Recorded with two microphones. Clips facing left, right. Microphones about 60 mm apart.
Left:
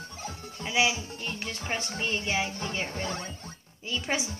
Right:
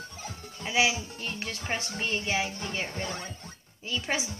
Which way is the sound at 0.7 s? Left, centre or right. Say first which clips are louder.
Even; centre.